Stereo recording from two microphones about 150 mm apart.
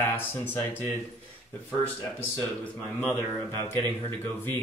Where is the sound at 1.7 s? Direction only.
10° left (ahead or behind).